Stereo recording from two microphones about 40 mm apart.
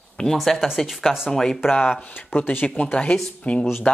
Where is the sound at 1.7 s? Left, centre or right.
Left.